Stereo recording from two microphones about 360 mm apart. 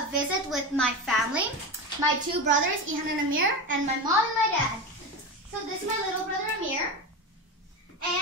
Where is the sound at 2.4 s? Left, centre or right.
Right.